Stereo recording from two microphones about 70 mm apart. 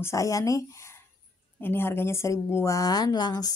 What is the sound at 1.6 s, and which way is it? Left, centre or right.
Speech, left.